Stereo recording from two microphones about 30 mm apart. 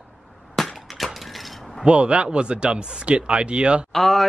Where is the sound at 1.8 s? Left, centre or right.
Right.